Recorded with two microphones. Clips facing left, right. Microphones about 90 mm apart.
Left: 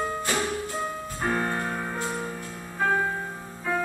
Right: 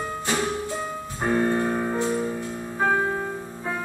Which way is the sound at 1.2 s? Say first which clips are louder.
Right 5 dB; 25° right (ahead or behind).